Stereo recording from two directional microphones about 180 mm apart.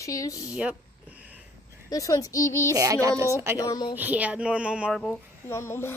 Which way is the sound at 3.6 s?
20° left (ahead or behind).